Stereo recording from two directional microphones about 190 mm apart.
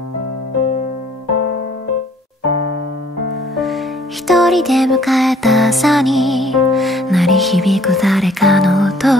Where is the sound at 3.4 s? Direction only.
Centre (ahead or behind).